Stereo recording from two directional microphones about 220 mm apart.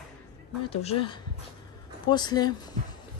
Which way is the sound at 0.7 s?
25° left (ahead or behind).